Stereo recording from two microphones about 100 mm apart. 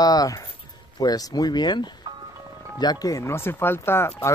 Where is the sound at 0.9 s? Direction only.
40° left (ahead or behind).